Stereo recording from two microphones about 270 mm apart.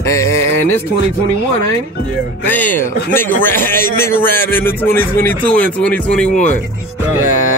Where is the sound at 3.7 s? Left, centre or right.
Left.